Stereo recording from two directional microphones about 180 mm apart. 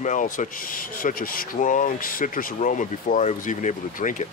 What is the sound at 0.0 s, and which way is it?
Speech, 45° left (ahead or behind).